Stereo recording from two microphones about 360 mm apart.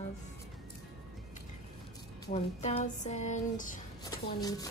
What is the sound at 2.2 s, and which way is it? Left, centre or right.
Music, centre.